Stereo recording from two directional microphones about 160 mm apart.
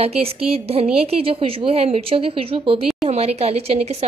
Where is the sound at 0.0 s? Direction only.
40° right (ahead or behind).